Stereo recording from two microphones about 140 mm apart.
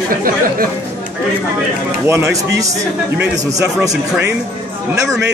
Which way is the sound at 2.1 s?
20° right (ahead or behind).